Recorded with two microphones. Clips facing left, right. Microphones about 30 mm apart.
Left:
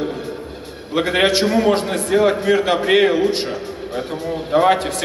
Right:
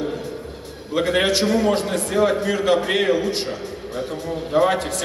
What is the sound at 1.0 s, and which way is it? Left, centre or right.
A man's voice, left.